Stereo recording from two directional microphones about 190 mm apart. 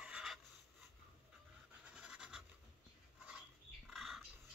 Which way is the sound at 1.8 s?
5° right (ahead or behind).